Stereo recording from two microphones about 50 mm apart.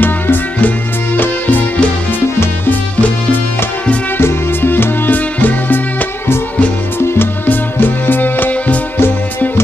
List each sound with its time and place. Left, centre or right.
0.0 s music: left
4.2 s music: left
7.4 s music: left